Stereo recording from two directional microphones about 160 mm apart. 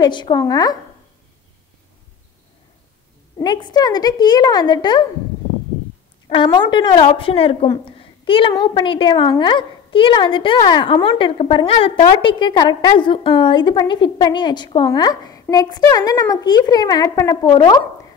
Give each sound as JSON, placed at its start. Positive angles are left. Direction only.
{"t": 0.0, "sound": "a woman's voice", "side_deg": 25}
{"t": 3.3, "sound": "a woman's voice", "side_deg": 30}
{"t": 6.2, "sound": "a woman's voice", "side_deg": 30}